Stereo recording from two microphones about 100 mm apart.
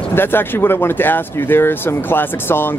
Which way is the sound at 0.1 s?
20° left (ahead or behind).